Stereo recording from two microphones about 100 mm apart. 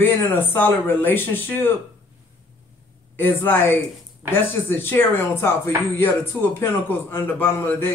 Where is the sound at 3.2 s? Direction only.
20° left (ahead or behind).